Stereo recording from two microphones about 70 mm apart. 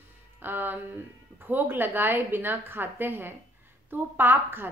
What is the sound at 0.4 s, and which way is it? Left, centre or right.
A woman's voice, right.